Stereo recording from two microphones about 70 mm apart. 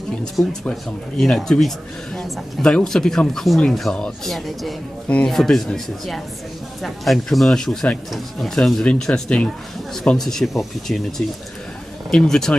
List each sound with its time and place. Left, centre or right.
0.2 s speech: centre
2.6 s speech: centre
5.0 s a man's voice: centre
5.3 s speech: centre